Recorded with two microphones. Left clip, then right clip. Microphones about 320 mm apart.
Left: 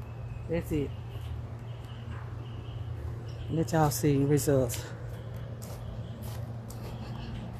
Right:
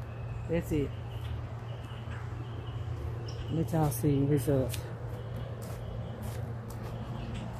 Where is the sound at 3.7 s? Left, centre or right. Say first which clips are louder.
Left 5 dB; left.